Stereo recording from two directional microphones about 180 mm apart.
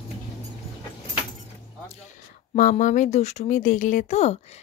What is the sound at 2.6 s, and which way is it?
Speech, 45° left (ahead or behind).